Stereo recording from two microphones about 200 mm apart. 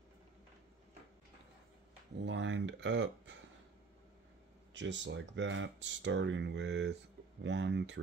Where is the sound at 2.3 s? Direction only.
65° right (ahead or behind).